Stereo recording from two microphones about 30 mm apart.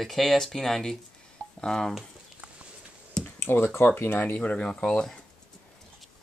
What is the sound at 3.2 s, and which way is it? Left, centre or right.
Computer keyboard, left.